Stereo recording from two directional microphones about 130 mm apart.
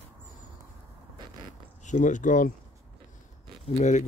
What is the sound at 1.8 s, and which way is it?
Speech, 70° left (ahead or behind).